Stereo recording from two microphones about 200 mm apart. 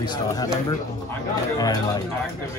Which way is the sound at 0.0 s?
20° left (ahead or behind).